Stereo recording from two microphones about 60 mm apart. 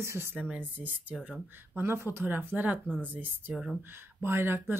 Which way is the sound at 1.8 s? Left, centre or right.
Right.